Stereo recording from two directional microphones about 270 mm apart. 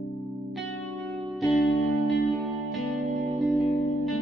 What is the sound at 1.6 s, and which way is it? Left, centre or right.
Music, left.